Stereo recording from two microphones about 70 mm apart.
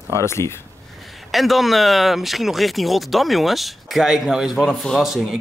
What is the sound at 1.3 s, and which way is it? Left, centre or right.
Speech, centre.